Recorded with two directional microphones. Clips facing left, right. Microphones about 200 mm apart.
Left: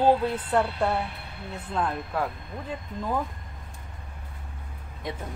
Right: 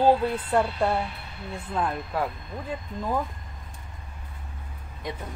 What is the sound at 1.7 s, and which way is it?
Speech, 5° right (ahead or behind).